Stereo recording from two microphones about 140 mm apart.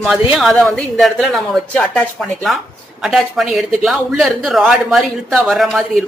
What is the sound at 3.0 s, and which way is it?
A man's voice, centre (ahead or behind).